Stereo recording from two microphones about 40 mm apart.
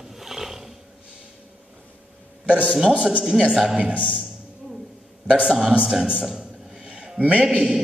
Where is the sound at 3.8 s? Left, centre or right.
Right.